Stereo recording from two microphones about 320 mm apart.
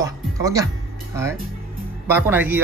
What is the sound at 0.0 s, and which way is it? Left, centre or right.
Music, centre.